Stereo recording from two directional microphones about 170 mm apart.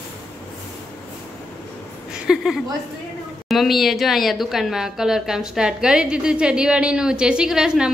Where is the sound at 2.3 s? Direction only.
5° right (ahead or behind).